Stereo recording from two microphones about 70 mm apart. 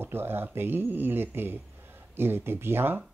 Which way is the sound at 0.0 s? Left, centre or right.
Right.